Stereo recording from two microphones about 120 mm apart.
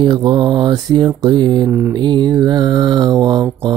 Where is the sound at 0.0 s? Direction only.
40° right (ahead or behind).